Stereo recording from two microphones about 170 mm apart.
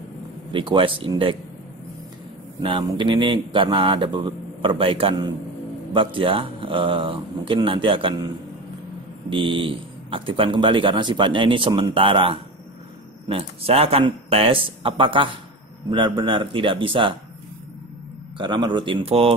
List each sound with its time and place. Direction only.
0.5 s speech: 30° right (ahead or behind)
2.6 s speech: 25° right (ahead or behind)
9.3 s speech: 30° right (ahead or behind)
18.4 s speech: 25° right (ahead or behind)